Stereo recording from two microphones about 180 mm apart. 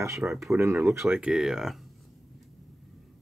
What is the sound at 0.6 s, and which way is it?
Speech, 15° right (ahead or behind).